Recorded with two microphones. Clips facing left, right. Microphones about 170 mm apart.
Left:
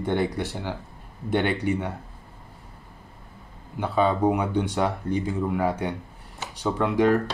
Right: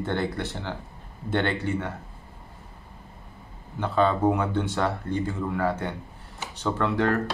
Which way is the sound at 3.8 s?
10° left (ahead or behind).